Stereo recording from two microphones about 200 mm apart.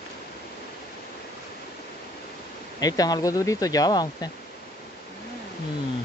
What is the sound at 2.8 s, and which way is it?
Speech, 20° left (ahead or behind).